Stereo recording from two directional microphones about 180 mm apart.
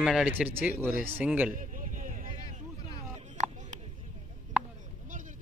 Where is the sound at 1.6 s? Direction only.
45° right (ahead or behind).